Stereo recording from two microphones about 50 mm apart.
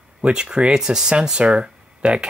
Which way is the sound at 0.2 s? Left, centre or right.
Right.